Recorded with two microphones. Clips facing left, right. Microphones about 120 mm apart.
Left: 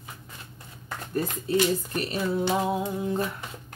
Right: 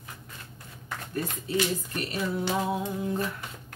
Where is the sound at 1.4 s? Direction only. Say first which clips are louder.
Left 5 dB; 40° left (ahead or behind).